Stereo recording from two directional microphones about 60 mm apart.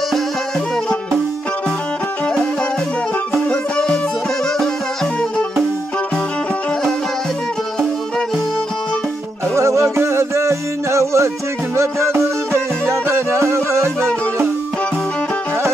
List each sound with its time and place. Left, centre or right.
3.4 s music: centre
9.6 s music: right